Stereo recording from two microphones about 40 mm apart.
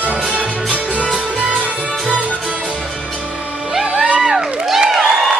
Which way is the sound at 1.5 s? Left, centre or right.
Right.